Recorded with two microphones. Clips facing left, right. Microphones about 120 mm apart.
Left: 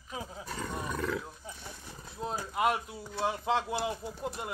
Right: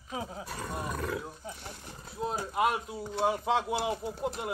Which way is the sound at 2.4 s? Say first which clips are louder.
Even; 30° right (ahead or behind).